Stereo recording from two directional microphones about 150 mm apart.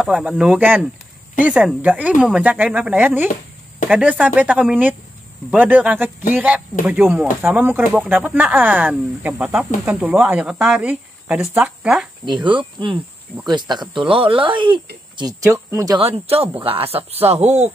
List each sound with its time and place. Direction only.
0.0 s speech: 5° right (ahead or behind)
12.3 s speech: 35° right (ahead or behind)
16.0 s speech: 40° right (ahead or behind)